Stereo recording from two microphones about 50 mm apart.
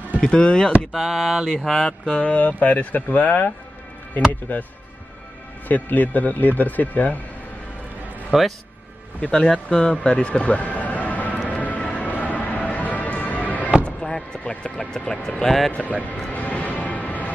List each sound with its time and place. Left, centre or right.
0.2 s speech: centre
0.9 s a sound: centre
1.6 s a sound: centre
2.0 s speech: left
5.7 s speech: left
8.3 s a man's voice: centre
9.2 s speech: centre; by 11.3 s left
11.4 s music: left
12.2 s fireworks: left
13.8 s speech: centre
15.7 s speech: left
16.3 s music: left